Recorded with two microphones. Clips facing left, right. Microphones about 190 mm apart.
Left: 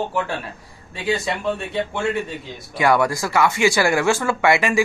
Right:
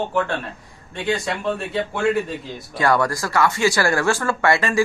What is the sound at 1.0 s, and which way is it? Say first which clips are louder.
A man's voice: even; centre (ahead or behind).